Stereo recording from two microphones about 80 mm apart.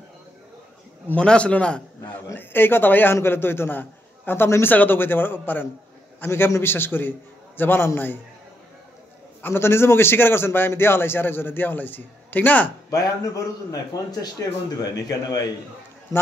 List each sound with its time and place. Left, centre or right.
1.1 s a man's voice: centre
2.3 s a man's voice: left
9.4 s a man's voice: left
12.9 s a man's voice: left
14.8 s a man's voice: left